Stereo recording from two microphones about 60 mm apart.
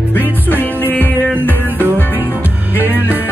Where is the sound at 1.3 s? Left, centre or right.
Left.